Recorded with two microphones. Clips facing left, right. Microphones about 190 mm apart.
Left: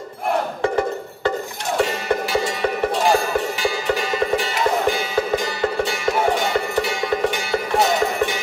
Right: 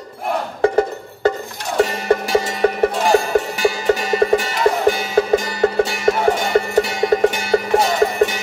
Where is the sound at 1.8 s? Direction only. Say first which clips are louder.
Right 5 dB; 45° right (ahead or behind).